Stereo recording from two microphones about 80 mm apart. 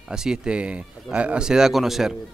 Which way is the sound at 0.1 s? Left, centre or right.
Centre.